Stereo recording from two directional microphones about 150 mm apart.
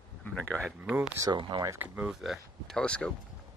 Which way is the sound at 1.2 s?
30° right (ahead or behind).